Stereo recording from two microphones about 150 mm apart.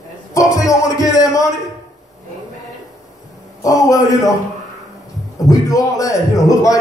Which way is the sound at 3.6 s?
25° left (ahead or behind).